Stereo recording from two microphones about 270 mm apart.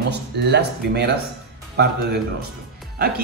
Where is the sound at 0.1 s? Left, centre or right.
Right.